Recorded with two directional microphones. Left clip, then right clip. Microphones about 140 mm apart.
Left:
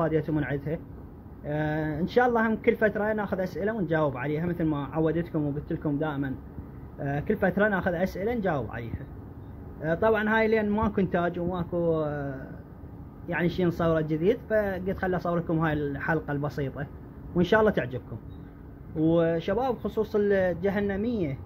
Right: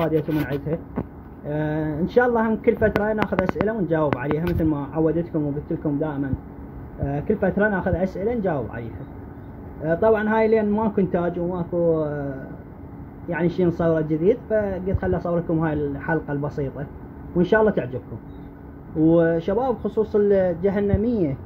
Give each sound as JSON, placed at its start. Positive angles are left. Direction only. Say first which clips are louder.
{"t": 0.0, "sound": "speech", "louder": "right 4 dB", "side_deg": 5}
{"t": 9.8, "sound": "speech", "louder": "right 5 dB", "side_deg": -10}
{"t": 13.3, "sound": "speech", "louder": "right 5 dB", "side_deg": -5}
{"t": 19.0, "sound": "speech", "louder": "right 6 dB", "side_deg": -25}